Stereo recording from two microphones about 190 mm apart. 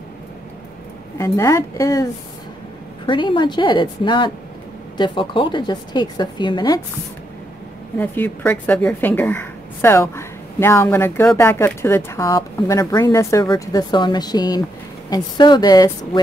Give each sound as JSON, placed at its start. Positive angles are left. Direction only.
{"t": 1.1, "sound": "a woman's voice", "side_deg": 15}
{"t": 3.1, "sound": "a woman's voice", "side_deg": 25}
{"t": 8.0, "sound": "a woman's voice", "side_deg": 10}